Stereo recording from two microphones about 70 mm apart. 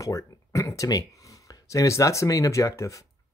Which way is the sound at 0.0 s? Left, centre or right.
Left.